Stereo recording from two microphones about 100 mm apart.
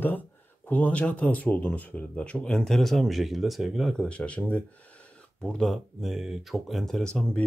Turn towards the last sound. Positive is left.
turn(degrees=10)  # may be behind; listen again after turning